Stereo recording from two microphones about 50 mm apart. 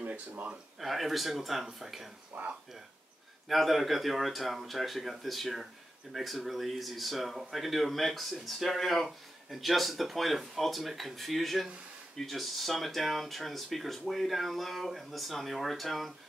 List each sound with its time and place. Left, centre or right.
0.0 s speech: right
0.7 s speech: centre
2.3 s speech: right
3.4 s speech: centre